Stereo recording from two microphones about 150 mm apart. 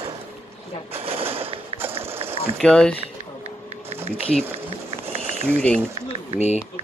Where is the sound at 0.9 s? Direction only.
40° right (ahead or behind).